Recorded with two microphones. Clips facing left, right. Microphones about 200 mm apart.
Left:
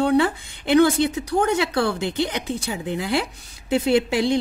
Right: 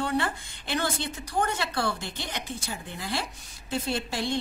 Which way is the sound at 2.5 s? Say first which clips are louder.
Left 10 dB; 90° left.